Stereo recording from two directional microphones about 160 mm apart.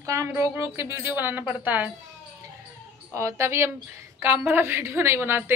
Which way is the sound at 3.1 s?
20° right (ahead or behind).